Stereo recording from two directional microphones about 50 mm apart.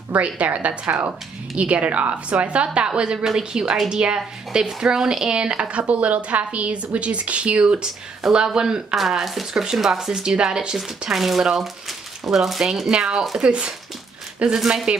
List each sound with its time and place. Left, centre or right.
0.1 s speech: right
8.9 s speech: centre
12.9 s speech: centre
14.6 s speech: centre